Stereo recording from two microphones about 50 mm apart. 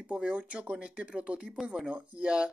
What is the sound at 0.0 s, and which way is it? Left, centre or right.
Speech, right.